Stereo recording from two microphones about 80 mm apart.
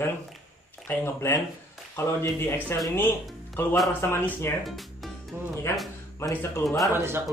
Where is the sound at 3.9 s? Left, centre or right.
Left.